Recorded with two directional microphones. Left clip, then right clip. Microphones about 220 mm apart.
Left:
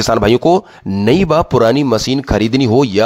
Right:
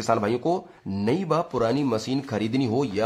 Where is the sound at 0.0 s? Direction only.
40° left (ahead or behind).